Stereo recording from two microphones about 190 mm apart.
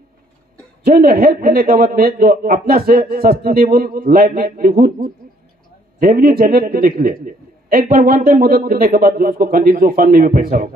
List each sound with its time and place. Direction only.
0.8 s a man's voice: 50° right (ahead or behind)